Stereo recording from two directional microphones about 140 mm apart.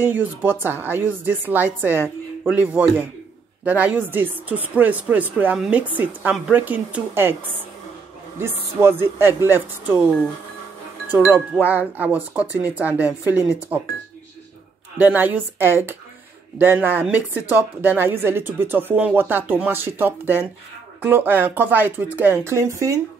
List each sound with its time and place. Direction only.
0.0 s speech: 15° right (ahead or behind)
8.4 s speech: 15° right (ahead or behind)
11.1 s speech: 15° right (ahead or behind)
15.0 s speech: 15° right (ahead or behind)